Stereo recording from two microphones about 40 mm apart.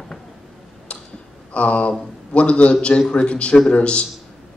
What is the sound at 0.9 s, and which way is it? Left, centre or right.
Tick-tock, left.